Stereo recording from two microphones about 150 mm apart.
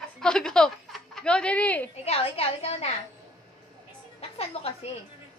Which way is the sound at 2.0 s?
40° left (ahead or behind).